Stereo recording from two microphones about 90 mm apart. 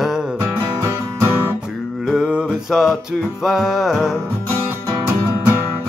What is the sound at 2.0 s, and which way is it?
Mantra, 5° right (ahead or behind).